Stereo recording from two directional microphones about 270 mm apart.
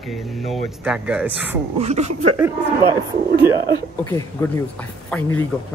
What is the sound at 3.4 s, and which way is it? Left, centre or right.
Speech, centre.